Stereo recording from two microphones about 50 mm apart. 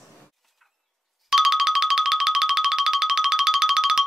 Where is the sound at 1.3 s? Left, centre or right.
Centre.